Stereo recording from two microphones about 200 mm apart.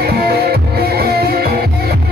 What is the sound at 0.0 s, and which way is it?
Music, 50° right (ahead or behind).